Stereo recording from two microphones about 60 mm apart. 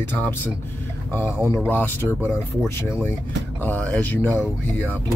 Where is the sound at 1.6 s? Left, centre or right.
Left.